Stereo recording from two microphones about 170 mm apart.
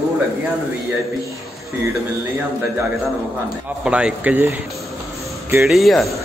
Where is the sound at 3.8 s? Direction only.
5° right (ahead or behind).